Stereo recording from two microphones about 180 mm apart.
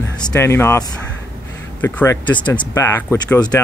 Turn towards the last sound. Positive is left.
turn(degrees=10)  # may be behind; listen again after turning